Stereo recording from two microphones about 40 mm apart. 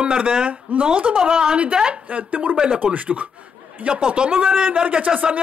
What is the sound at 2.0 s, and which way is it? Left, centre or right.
Speech, right.